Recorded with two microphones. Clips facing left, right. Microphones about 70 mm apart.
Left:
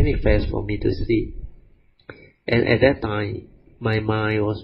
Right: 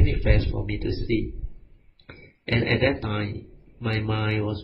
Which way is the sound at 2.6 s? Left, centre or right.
Left.